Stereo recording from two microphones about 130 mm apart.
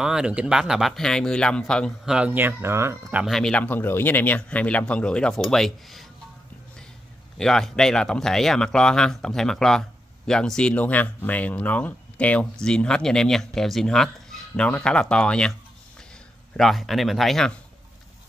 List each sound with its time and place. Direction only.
0.0 s speech: 5° right (ahead or behind)
2.0 s speech: 10° right (ahead or behind)
3.3 s speech: 5° left (ahead or behind)
7.3 s speech: 5° left (ahead or behind)
16.5 s speech: centre (ahead or behind)